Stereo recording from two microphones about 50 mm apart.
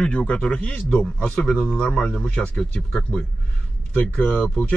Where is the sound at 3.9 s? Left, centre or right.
Left.